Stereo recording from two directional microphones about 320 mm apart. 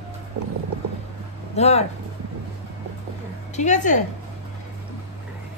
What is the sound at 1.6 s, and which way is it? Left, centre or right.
Speech, centre.